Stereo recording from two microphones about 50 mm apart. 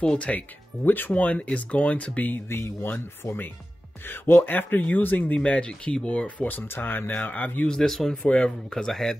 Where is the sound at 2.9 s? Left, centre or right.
Left.